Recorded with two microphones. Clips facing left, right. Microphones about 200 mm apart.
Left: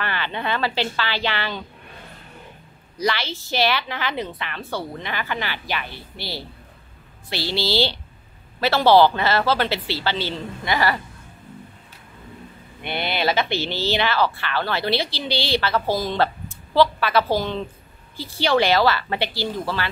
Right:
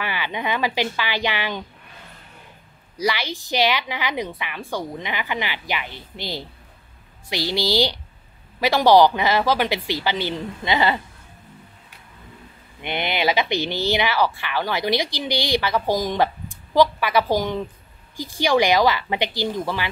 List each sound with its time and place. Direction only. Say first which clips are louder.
0.0 s speech: even; 10° right (ahead or behind)
3.0 s speech: even; 10° right (ahead or behind)
12.8 s speech: right 1 dB; 15° right (ahead or behind)